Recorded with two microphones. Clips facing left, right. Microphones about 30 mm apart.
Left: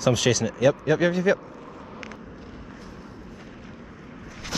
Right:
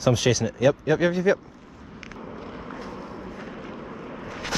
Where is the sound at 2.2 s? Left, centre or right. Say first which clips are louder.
Right 5 dB; right.